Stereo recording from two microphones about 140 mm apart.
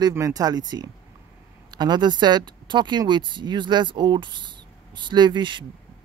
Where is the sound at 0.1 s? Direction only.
25° right (ahead or behind).